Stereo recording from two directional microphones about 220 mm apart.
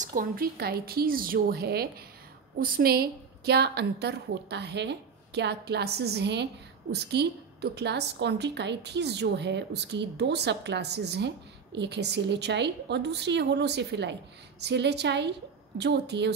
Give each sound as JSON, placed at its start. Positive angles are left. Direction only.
{"t": 0.0, "sound": "a woman's voice", "side_deg": -40}